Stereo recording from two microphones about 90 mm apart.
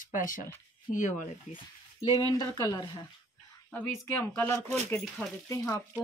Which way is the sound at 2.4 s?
45° left (ahead or behind).